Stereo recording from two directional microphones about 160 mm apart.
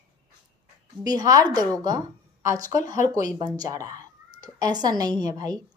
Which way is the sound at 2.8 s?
55° left (ahead or behind).